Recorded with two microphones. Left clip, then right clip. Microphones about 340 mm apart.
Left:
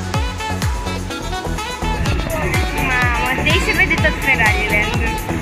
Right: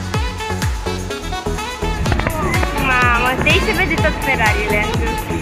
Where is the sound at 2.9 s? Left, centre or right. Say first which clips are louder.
Right 3 dB; centre.